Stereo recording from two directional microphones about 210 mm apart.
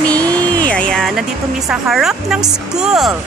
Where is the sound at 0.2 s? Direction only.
20° right (ahead or behind).